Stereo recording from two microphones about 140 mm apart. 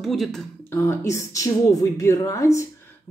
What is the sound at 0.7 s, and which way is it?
Speech, 20° left (ahead or behind).